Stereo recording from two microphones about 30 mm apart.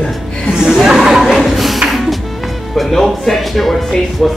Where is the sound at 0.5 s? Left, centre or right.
Centre.